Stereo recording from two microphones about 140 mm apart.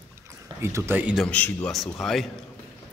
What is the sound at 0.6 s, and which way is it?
Speech, 20° right (ahead or behind).